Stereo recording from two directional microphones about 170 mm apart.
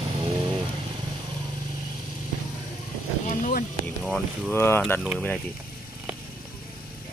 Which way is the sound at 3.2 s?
50° left (ahead or behind).